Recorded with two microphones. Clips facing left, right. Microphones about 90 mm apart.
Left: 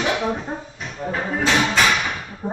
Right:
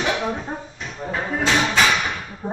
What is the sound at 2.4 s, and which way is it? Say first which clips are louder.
Speech: left 1 dB; 15° right (ahead or behind).